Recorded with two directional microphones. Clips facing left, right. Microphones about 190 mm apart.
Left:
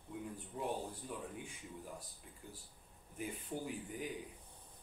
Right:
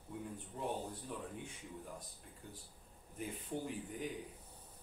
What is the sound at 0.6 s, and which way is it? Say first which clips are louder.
Speech: left 1 dB; 5° left (ahead or behind).